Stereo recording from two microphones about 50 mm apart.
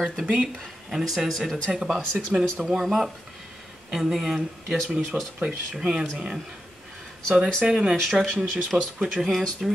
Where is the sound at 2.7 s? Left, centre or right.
Centre.